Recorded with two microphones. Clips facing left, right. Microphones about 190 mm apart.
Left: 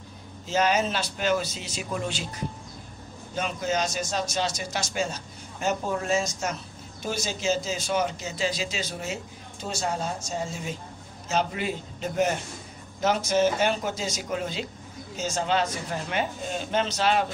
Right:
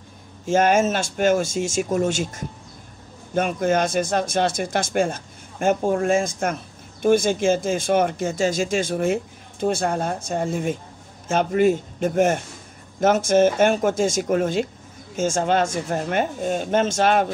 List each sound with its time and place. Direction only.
0.5 s speech: 50° right (ahead or behind)